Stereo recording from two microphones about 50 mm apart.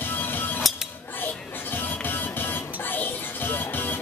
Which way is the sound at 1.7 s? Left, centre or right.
Left.